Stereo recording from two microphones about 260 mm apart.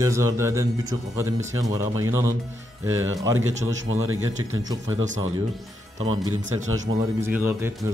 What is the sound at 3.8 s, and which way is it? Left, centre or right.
Speech, right.